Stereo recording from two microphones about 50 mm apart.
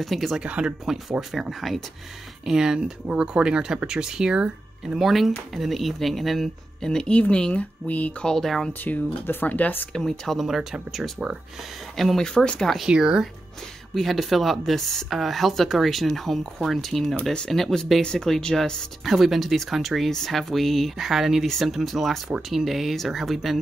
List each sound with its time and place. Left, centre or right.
0.0 s speech: centre
0.4 s speech: right
0.8 s speech: centre
2.4 s speech: centre
4.9 s speech: centre
6.9 s speech: centre
8.2 s speech: centre
8.8 s speech: left
9.9 s speech: centre
10.4 s speech: centre
12.8 s speech: centre
13.9 s speech: centre
17.2 s speech: centre
19.0 s speech: centre